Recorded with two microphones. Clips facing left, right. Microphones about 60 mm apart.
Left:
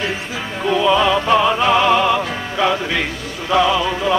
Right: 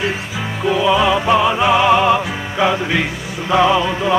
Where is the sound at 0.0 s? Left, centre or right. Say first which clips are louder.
Right 2 dB; centre.